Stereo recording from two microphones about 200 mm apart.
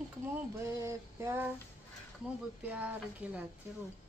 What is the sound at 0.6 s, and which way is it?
Speech, 15° right (ahead or behind).